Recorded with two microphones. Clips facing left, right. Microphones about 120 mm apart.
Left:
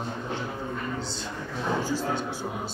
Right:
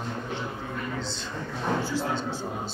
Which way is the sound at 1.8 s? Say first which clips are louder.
Even; 15° left (ahead or behind).